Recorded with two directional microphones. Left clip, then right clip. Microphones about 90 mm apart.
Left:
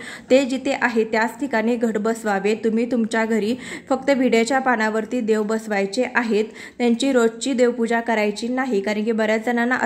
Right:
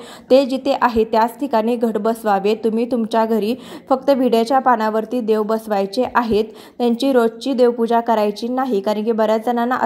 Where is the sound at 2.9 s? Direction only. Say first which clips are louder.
Right 4 dB; 15° right (ahead or behind).